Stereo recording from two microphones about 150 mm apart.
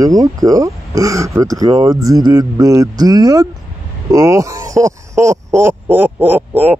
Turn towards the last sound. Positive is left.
turn(degrees=-15)  # may be behind; listen again after turning